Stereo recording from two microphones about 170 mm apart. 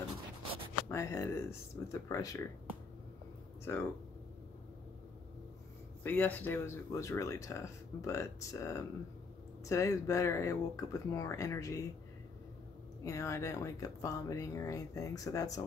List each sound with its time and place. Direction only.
0.8 s speech: 15° left (ahead or behind)
3.7 s speech: 15° left (ahead or behind)
6.0 s speech: 10° left (ahead or behind)
13.0 s speech: 15° left (ahead or behind)